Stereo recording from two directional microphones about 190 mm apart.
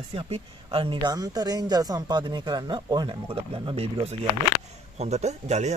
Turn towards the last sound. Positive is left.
turn(degrees=-35)  # may be behind; listen again after turning